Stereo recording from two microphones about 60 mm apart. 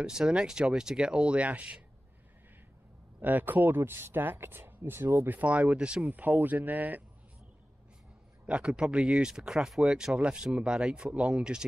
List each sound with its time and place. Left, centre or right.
0.0 s speech: centre
3.2 s speech: right
5.2 s speech: right
8.5 s speech: centre